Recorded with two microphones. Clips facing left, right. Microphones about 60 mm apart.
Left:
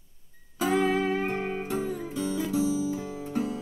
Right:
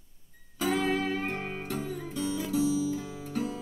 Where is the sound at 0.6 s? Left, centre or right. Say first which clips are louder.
Left 3 dB; centre.